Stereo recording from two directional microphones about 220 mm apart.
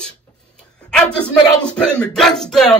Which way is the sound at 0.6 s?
5° left (ahead or behind).